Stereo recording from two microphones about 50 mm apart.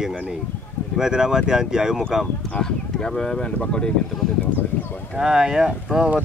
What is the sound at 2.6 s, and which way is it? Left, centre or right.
Speech, centre.